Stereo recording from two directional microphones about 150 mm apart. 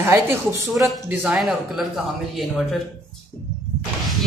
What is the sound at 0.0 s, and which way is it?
A woman's voice, 15° right (ahead or behind).